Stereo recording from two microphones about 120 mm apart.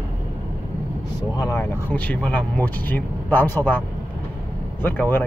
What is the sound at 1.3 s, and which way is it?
Speech, 35° left (ahead or behind).